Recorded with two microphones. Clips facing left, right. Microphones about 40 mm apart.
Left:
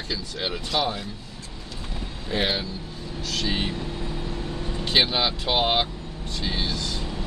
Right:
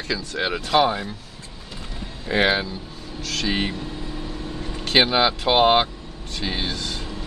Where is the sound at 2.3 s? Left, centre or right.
Right.